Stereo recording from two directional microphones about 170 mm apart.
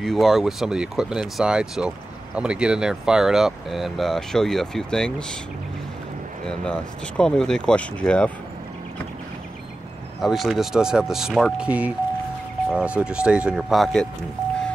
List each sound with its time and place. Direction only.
0.0 s speech: centre (ahead or behind)
6.4 s speech: 5° left (ahead or behind)
10.2 s speech: centre (ahead or behind)